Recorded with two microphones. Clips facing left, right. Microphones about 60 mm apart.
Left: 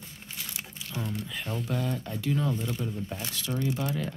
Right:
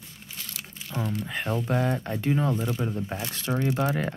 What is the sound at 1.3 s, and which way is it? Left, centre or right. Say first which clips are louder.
Speech: right 5 dB; right.